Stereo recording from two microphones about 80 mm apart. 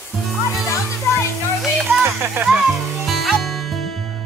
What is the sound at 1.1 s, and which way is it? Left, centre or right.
Music, left.